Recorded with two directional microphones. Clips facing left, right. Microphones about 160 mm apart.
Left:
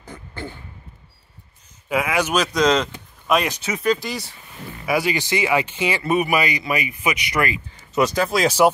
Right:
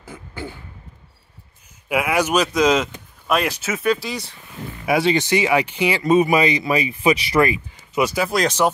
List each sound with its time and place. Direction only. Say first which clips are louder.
0.0 s a sound: right 1 dB; 10° right (ahead or behind)
1.9 s speech: right 2 dB; 10° right (ahead or behind)
4.8 s speech: right 3 dB; 25° right (ahead or behind)
7.9 s speech: left 1 dB; 10° right (ahead or behind)
8.4 s speech: left 2 dB; 10° left (ahead or behind)